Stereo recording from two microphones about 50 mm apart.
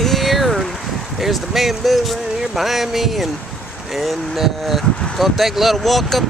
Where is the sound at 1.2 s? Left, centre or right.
Centre.